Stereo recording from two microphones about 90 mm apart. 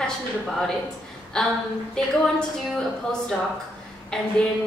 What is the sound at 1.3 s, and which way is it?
A woman's voice, 10° left (ahead or behind).